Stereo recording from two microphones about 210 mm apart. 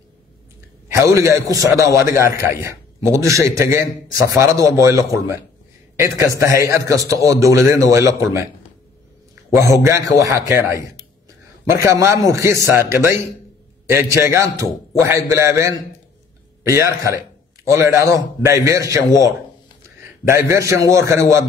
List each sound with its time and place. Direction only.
0.9 s a man's voice: 15° right (ahead or behind)
9.8 s a man's voice: 15° right (ahead or behind)
11.7 s a man's voice: 15° right (ahead or behind)